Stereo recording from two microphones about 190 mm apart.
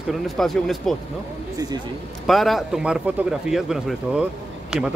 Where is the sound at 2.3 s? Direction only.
Centre (ahead or behind).